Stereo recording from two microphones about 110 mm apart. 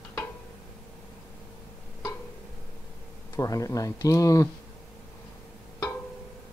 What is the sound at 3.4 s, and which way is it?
Speech, 30° left (ahead or behind).